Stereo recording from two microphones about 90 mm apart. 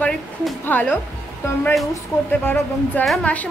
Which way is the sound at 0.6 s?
20° left (ahead or behind).